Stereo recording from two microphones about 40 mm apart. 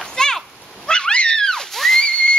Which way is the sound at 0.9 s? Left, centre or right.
Left.